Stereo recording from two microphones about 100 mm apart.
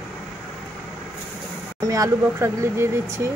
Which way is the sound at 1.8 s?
35° right (ahead or behind).